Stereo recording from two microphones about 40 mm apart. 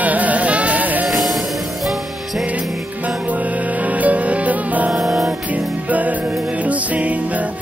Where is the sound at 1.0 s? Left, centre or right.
Centre.